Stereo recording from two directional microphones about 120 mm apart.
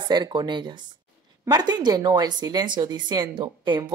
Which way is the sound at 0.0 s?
35° right (ahead or behind).